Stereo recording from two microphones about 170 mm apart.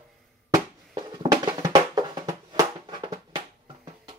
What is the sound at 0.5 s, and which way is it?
Music, 20° right (ahead or behind).